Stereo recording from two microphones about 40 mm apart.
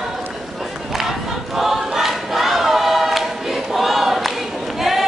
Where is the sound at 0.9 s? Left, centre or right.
Centre.